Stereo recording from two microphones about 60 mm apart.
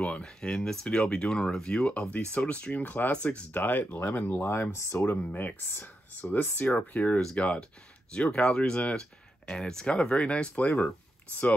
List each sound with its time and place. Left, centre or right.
0.0 s speech: centre
4.5 s speech: left
5.2 s speech: left